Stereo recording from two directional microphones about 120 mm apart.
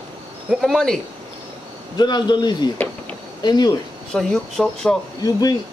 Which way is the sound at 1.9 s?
35° left (ahead or behind).